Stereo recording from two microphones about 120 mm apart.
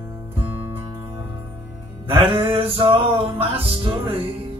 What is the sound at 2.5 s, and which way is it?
Music, 50° right (ahead or behind).